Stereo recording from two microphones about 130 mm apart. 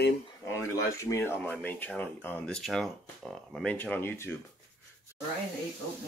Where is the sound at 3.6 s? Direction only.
10° left (ahead or behind).